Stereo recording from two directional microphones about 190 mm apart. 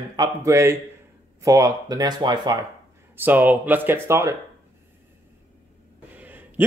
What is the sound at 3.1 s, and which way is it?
Speech, 10° right (ahead or behind).